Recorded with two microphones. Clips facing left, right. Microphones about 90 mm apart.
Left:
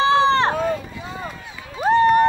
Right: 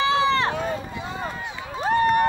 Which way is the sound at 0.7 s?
30° right (ahead or behind).